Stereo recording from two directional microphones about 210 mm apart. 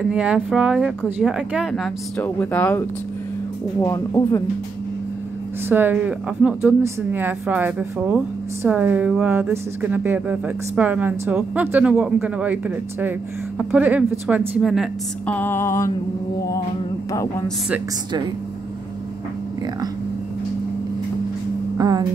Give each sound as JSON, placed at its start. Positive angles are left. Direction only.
{"t": 0.1, "sound": "a woman's voice", "side_deg": -5}
{"t": 3.8, "sound": "speech", "side_deg": 15}
{"t": 5.7, "sound": "a woman's voice", "side_deg": -10}
{"t": 21.7, "sound": "speech", "side_deg": -20}